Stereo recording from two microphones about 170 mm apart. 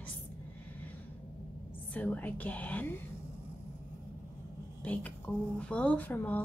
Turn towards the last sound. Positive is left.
turn(degrees=10)  # may be behind; listen again after turning